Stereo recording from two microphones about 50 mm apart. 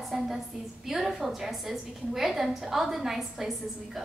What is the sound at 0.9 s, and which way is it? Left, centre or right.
A woman's voice, centre.